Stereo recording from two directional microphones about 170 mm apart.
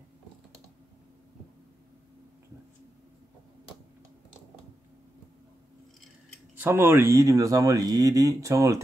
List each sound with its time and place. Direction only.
6.5 s speech: 10° right (ahead or behind)